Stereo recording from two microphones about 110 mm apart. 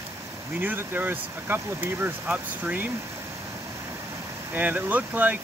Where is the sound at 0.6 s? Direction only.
20° right (ahead or behind).